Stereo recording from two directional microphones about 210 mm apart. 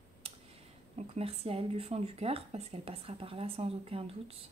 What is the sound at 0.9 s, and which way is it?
Speech, 30° right (ahead or behind).